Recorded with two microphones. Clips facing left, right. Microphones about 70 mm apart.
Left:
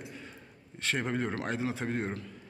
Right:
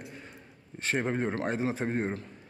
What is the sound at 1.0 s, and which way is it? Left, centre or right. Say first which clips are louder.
Speech: right 3 dB; centre.